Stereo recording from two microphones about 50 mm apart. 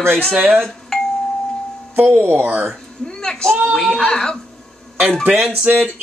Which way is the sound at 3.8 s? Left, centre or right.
Centre.